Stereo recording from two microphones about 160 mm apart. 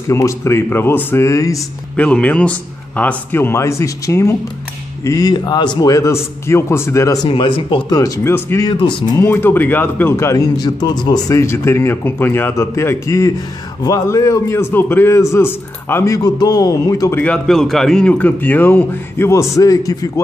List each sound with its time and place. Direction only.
0.1 s a man's voice: 15° left (ahead or behind)
2.0 s a man's voice: 5° left (ahead or behind)
7.2 s a man's voice: 30° left (ahead or behind)